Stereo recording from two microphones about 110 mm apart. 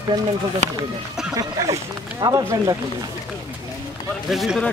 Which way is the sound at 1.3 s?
30° right (ahead or behind).